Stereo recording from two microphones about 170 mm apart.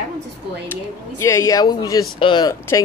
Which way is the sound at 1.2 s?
15° left (ahead or behind).